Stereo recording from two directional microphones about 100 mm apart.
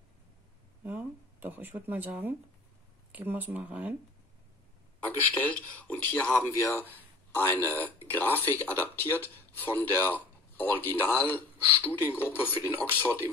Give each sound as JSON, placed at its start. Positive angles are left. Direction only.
{"t": 0.8, "sound": "speech", "side_deg": -20}
{"t": 5.0, "sound": "speech", "side_deg": 15}